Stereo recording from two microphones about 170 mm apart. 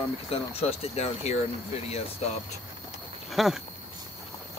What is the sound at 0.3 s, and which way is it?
Speech, 35° left (ahead or behind).